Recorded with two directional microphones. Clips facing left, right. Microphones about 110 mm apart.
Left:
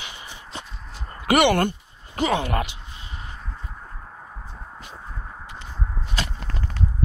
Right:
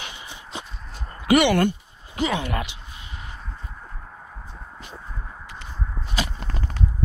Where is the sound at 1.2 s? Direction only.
55° left (ahead or behind).